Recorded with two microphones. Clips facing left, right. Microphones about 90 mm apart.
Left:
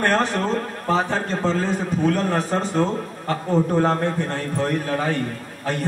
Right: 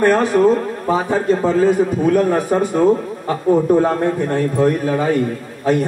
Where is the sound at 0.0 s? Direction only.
10° right (ahead or behind).